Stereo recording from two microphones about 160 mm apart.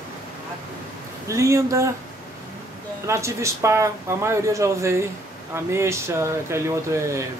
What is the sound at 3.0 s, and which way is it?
Speech, 20° right (ahead or behind).